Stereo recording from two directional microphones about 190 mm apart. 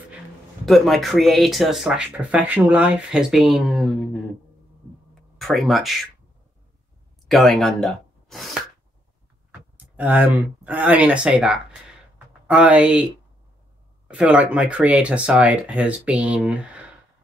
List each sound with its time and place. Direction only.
0.7 s speech: centre (ahead or behind)
5.4 s speech: centre (ahead or behind)
7.2 s speech: centre (ahead or behind)
9.9 s speech: 10° right (ahead or behind)